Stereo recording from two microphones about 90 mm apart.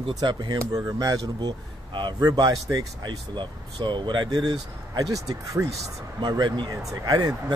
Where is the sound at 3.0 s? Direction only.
55° right (ahead or behind); by 5.7 s 40° right (ahead or behind).